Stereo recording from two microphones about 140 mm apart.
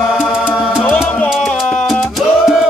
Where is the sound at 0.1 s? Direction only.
5° right (ahead or behind).